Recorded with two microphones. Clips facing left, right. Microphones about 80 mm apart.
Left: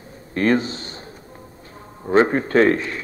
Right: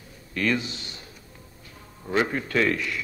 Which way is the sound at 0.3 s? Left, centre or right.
Left.